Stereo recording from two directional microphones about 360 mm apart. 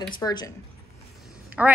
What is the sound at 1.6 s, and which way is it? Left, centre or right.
Speech, centre.